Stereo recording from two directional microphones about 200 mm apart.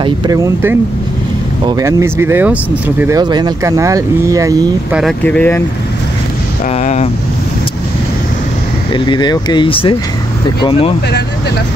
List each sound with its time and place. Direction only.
0.0 s speech: 15° right (ahead or behind)
3.2 s speech: 20° right (ahead or behind)
4.9 s speech: 5° left (ahead or behind)
6.7 s vehicle: 35° left (ahead or behind)
8.9 s speech: 25° left (ahead or behind)